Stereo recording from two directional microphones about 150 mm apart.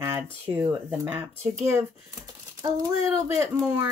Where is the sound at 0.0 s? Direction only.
15° right (ahead or behind).